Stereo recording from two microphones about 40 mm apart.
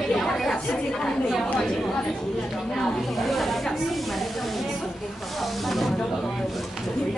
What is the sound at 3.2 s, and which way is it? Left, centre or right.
Snake, centre.